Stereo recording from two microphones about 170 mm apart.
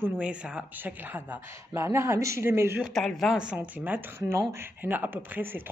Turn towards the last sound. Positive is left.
turn(degrees=-10)  # may be behind; listen again after turning